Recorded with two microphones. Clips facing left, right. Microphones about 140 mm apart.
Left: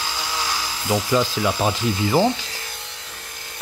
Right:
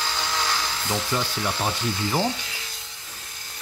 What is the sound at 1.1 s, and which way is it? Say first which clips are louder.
Ratchet: left 7 dB; 90° left.